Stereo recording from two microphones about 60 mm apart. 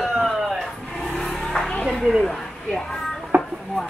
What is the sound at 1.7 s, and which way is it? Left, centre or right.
Speech, centre.